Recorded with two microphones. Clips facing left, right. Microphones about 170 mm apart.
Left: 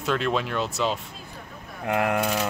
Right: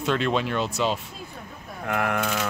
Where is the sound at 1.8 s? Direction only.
20° left (ahead or behind).